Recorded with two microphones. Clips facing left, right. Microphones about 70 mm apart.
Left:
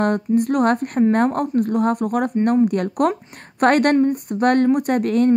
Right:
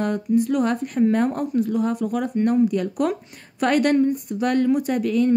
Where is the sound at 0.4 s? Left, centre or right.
Left.